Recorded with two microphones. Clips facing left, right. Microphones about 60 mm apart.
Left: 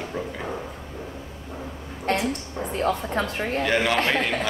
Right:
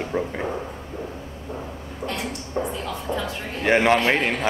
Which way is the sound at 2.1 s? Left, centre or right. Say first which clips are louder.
Left 7 dB; left.